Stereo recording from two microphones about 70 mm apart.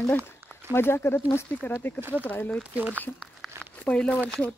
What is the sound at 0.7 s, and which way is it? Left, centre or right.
Speech, left.